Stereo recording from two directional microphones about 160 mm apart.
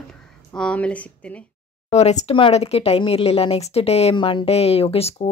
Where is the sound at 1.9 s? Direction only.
45° left (ahead or behind).